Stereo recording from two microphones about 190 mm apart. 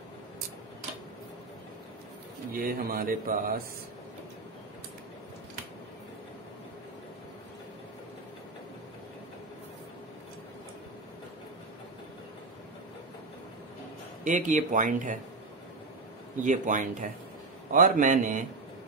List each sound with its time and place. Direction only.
2.5 s speech: 50° right (ahead or behind)
14.2 s speech: 45° right (ahead or behind)
16.4 s speech: 45° right (ahead or behind)